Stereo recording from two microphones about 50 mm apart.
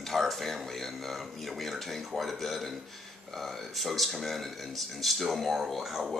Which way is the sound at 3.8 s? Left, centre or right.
Centre.